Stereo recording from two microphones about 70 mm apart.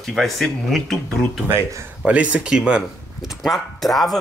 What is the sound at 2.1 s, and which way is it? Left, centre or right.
Speech, centre.